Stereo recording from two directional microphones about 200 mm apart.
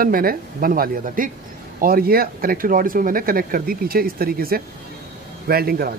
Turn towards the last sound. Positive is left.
turn(degrees=-50)  # may be behind; listen again after turning